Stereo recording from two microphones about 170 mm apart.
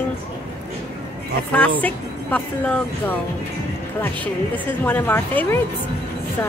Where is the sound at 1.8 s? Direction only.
5° left (ahead or behind).